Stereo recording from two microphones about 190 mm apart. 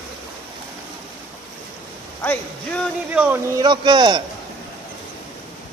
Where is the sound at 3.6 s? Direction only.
25° right (ahead or behind).